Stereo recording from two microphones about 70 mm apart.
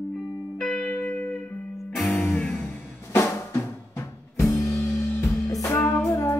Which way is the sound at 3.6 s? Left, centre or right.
Left.